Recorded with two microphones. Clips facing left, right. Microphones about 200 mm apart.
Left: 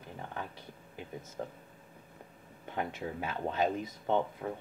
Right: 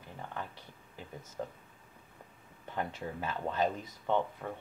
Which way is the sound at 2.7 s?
15° left (ahead or behind).